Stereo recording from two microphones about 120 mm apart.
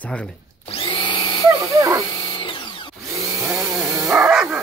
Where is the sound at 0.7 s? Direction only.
45° left (ahead or behind).